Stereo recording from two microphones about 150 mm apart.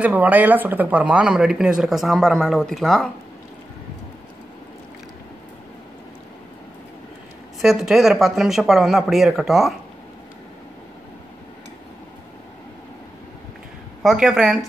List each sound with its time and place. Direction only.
0.0 s speech: 10° right (ahead or behind)
7.6 s speech: centre (ahead or behind)
14.0 s speech: centre (ahead or behind)